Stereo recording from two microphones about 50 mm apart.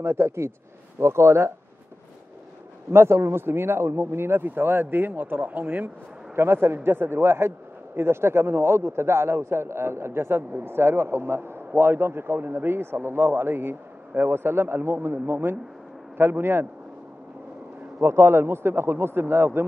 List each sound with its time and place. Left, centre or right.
0.0 s speech: right
2.9 s a man's voice: right
6.3 s a man's voice: right
18.0 s a man's voice: right